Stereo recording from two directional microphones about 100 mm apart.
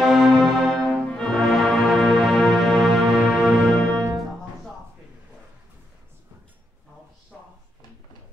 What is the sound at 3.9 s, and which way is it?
Music, 35° right (ahead or behind).